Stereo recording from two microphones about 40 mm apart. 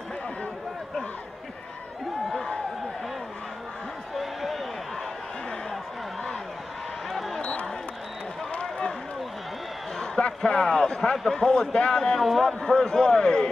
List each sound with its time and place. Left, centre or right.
4.2 s a sound: centre
7.2 s a sound: centre
8.5 s run: left
10.2 s speech: left
12.2 s a man's voice: centre
12.6 s a man's voice: centre